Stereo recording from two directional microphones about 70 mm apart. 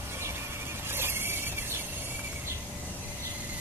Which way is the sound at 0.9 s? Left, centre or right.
Right.